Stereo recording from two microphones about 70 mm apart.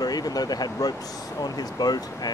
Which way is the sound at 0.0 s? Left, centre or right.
Left.